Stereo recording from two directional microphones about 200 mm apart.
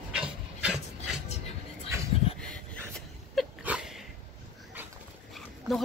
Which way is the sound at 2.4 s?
5° left (ahead or behind).